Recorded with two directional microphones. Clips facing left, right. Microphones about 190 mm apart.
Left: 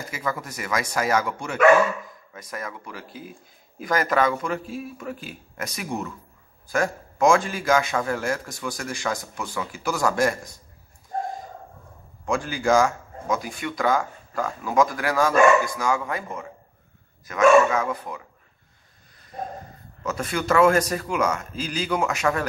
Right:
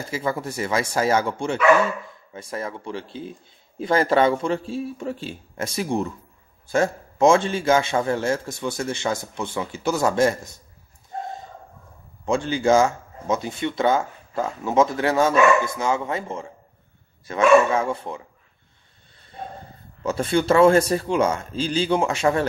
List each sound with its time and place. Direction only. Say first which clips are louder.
0.1 s speech: right 5 dB; 30° right (ahead or behind)
12.3 s speech: right 3 dB; 25° right (ahead or behind)
19.3 s a man's voice: left 2 dB; 30° right (ahead or behind)